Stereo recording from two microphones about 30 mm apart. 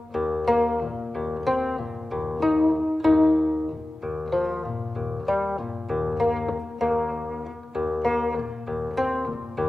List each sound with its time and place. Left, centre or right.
0.1 s music: centre
1.4 s zither: centre
2.3 s pizzicato: centre
4.3 s music: centre
7.7 s music: centre
8.1 s music: centre
8.9 s pizzicato: centre
9.6 s music: centre